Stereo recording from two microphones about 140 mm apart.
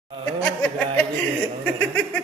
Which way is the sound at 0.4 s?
10° left (ahead or behind).